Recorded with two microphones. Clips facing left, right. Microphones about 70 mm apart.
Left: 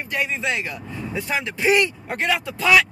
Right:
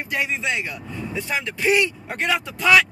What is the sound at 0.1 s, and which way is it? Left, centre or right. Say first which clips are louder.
Speech: even; centre.